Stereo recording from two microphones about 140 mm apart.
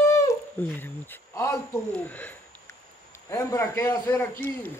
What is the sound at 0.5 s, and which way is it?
A man's voice, 15° left (ahead or behind).